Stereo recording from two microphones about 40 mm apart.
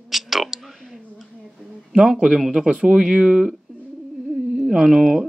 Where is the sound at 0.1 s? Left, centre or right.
Centre.